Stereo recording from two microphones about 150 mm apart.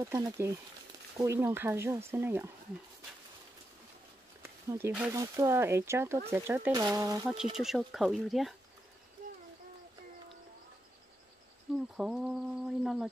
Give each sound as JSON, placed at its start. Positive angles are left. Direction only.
{"t": 0.0, "sound": "speech", "side_deg": -20}
{"t": 4.4, "sound": "a sound", "side_deg": -15}
{"t": 5.1, "sound": "speech", "side_deg": -20}
{"t": 7.5, "sound": "mantra", "side_deg": 0}
{"t": 11.7, "sound": "a sound", "side_deg": 0}
{"t": 12.0, "sound": "mantra", "side_deg": -5}